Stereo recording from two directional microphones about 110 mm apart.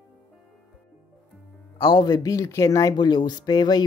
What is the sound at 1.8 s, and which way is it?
Speech, 45° left (ahead or behind).